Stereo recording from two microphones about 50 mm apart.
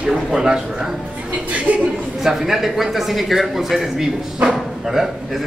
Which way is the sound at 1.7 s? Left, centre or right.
Right.